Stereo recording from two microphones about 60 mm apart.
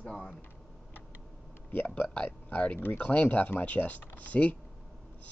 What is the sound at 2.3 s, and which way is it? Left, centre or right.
Speech, left.